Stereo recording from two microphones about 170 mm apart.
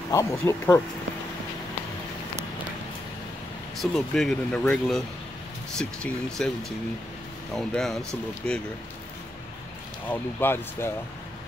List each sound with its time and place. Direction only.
0.1 s speech: 15° left (ahead or behind)
3.7 s speech: centre (ahead or behind)
7.5 s speech: centre (ahead or behind)
10.0 s speech: 10° left (ahead or behind)